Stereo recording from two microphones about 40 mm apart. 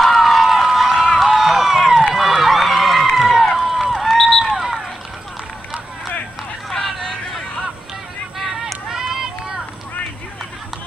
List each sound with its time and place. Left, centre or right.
0.0 s run: centre
4.6 s run: centre
8.9 s run: centre